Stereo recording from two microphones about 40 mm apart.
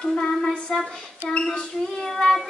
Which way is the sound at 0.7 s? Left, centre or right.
Centre.